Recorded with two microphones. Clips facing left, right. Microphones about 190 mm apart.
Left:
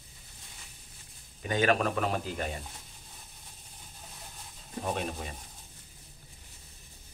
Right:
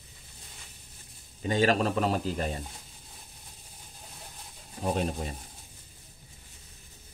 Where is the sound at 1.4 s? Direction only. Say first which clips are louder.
Right 2 dB; 30° right (ahead or behind).